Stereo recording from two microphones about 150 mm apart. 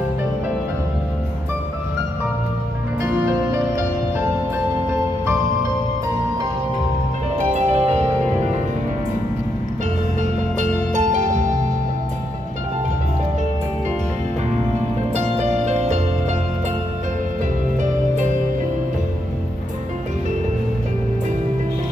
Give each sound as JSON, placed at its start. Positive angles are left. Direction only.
{"t": 3.0, "sound": "music", "side_deg": -20}
{"t": 7.3, "sound": "music", "side_deg": -50}
{"t": 10.6, "sound": "music", "side_deg": -55}
{"t": 15.1, "sound": "music", "side_deg": -45}
{"t": 17.7, "sound": "music", "side_deg": -55}